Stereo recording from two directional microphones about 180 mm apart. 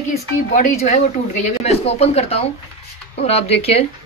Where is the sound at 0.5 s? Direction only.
40° left (ahead or behind).